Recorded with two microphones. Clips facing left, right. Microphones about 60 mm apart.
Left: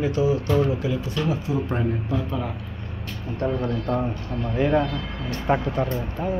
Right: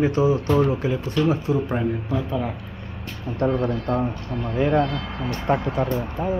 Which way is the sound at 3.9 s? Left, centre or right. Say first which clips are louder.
Right 1 dB; centre.